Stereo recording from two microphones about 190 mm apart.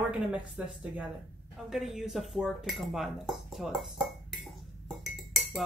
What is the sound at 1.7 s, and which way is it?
Dishes, centre (ahead or behind).